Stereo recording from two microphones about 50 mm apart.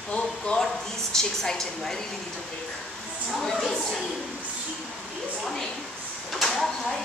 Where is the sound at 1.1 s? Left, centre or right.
Centre.